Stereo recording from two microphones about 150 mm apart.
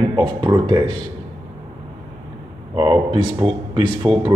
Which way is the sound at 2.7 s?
40° right (ahead or behind).